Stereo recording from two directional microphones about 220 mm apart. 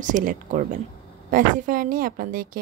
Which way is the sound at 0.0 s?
40° right (ahead or behind).